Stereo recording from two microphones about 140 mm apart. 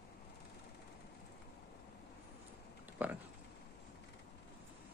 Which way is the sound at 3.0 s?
10° right (ahead or behind).